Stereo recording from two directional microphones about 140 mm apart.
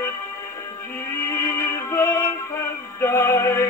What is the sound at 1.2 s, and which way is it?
Music, 20° left (ahead or behind).